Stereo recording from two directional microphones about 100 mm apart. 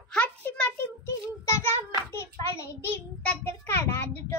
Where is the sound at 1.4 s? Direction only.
25° left (ahead or behind).